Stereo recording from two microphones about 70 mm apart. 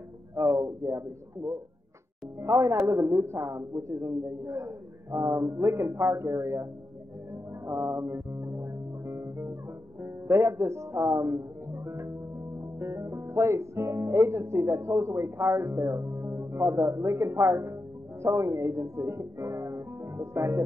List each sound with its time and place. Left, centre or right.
0.4 s speech: right
2.4 s a man's voice: right
7.6 s music: right
10.0 s speech: right